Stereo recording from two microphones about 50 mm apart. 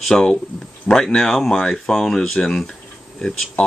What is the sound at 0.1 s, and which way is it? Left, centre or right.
Speech, centre.